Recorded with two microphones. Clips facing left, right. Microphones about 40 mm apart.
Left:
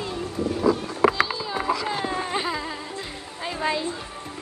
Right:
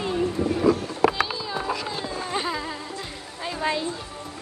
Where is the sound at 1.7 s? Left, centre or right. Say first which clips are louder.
Left 4 dB; left.